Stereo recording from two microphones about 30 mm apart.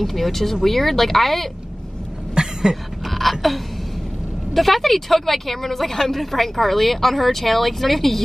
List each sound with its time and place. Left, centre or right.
0.0 s a woman's voice: centre
2.4 s cough: right
3.1 s a sound: centre
4.6 s a woman's voice: centre